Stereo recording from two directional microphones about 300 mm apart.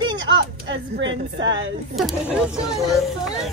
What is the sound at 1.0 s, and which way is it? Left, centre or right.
Speech, right.